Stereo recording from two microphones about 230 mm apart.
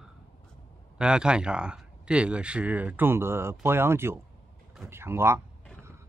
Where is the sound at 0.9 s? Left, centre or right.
Centre.